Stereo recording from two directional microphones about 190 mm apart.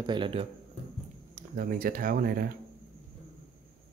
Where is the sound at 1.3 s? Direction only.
45° right (ahead or behind).